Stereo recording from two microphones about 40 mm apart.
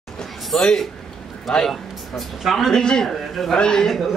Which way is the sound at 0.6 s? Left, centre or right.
Centre.